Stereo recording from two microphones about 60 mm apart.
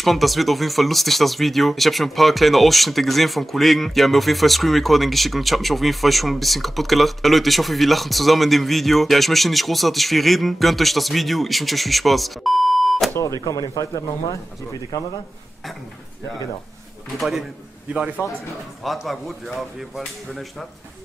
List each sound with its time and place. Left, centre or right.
0.0 s speech: centre
13.2 s speech: left
17.2 s speech: centre
18.2 s speech: right
18.9 s speech: centre